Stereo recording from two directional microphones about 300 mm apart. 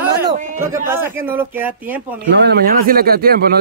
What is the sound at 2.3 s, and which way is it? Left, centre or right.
Speech, right.